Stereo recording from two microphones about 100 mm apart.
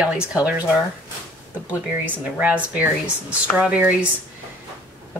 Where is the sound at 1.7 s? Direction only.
15° right (ahead or behind).